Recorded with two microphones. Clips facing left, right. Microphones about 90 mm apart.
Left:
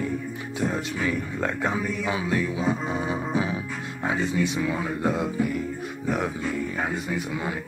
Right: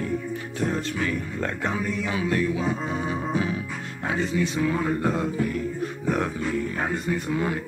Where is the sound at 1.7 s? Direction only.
25° left (ahead or behind).